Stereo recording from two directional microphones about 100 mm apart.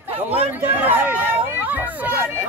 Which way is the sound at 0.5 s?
20° right (ahead or behind).